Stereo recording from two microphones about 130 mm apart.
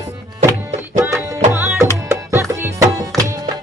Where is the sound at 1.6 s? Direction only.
5° right (ahead or behind).